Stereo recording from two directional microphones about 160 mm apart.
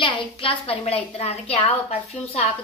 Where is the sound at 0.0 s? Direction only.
30° left (ahead or behind).